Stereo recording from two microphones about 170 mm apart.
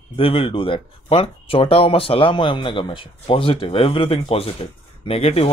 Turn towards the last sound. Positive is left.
turn(degrees=35)  # may be behind; listen again after turning